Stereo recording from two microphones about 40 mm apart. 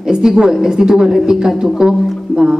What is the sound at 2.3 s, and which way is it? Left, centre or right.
Music, centre.